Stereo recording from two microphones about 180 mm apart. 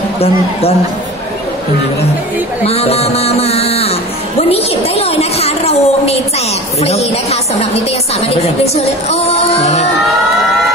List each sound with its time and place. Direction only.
0.2 s a woman's voice: 35° left (ahead or behind)
2.6 s a woman's voice: 35° left (ahead or behind)
9.1 s a woman's voice: 35° left (ahead or behind)